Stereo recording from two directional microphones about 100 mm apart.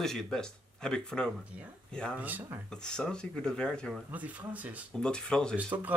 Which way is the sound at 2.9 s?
10° left (ahead or behind).